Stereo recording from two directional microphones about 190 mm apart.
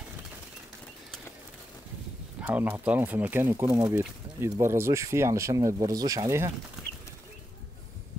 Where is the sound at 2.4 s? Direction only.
10° right (ahead or behind).